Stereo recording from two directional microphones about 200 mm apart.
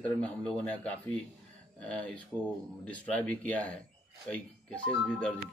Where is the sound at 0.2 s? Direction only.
5° left (ahead or behind).